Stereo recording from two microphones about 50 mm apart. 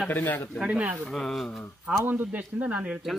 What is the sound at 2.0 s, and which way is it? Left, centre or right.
Speech, right.